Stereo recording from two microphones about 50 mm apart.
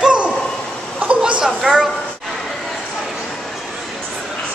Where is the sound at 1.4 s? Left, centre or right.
Centre.